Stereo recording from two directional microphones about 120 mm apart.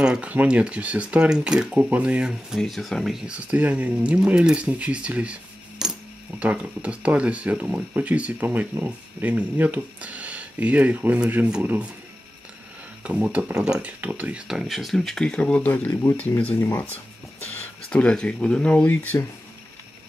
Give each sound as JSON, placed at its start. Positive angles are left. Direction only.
{"t": 0.0, "sound": "speech", "side_deg": -10}
{"t": 13.0, "sound": "speech", "side_deg": -10}